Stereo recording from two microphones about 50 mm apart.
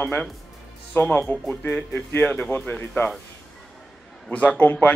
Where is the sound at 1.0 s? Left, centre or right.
Left.